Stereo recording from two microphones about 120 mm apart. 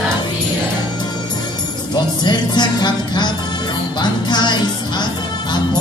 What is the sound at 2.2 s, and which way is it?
Music, 40° left (ahead or behind).